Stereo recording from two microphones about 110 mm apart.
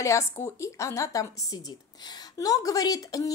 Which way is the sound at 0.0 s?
25° left (ahead or behind).